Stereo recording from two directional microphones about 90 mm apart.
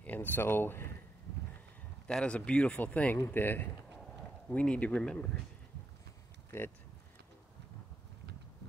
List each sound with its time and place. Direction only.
0.0 s speech: 20° left (ahead or behind)
2.0 s speech: 10° left (ahead or behind)
6.5 s speech: 25° left (ahead or behind)